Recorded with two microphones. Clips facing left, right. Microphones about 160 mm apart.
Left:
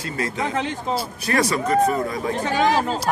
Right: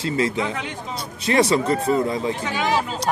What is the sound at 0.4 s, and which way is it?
Speech, 40° left (ahead or behind).